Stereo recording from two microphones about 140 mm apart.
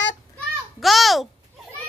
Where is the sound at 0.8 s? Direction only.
Centre (ahead or behind).